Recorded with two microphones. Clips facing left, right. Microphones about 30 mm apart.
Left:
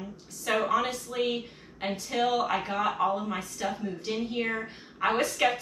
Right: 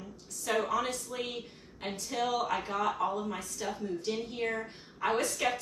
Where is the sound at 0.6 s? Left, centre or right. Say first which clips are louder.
Left 4 dB; left.